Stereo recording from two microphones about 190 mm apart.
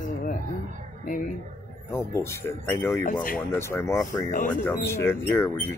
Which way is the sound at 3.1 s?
45° left (ahead or behind).